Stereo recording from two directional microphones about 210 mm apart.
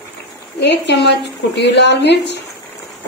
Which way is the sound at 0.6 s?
55° left (ahead or behind).